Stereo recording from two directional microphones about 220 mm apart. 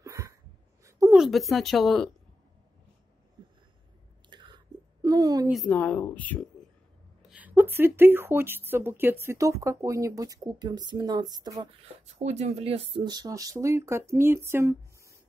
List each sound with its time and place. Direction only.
0.0 s a sound: 15° right (ahead or behind)
1.1 s speech: centre (ahead or behind)
4.3 s chewing: 20° right (ahead or behind)
5.0 s a woman's voice: 15° right (ahead or behind)
5.5 s speech: 5° left (ahead or behind)
7.2 s speech: 5° right (ahead or behind)
12.2 s speech: 30° right (ahead or behind); by 15.1 s 15° right (ahead or behind)